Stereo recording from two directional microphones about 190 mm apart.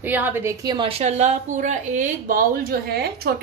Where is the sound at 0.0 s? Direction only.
10° right (ahead or behind).